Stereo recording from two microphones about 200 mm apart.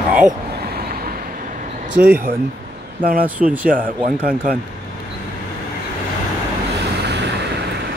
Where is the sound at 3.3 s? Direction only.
5° right (ahead or behind).